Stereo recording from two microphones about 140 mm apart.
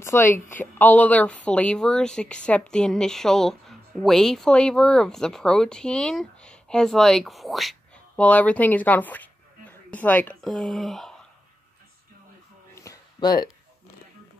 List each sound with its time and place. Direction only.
0.0 s a woman's voice: 20° left (ahead or behind)
10.4 s speech: centre (ahead or behind)
12.7 s a sound: 25° left (ahead or behind)